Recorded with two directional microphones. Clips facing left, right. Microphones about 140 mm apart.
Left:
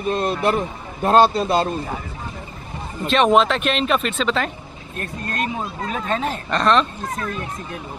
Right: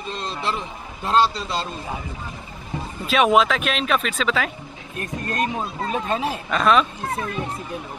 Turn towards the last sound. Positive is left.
turn(degrees=-5)  # may be behind; listen again after turning